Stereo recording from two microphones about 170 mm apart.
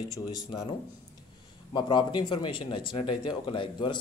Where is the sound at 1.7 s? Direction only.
25° left (ahead or behind).